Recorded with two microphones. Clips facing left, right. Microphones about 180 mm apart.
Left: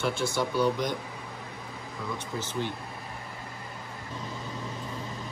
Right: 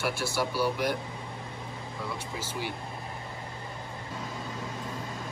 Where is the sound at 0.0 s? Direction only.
5° right (ahead or behind).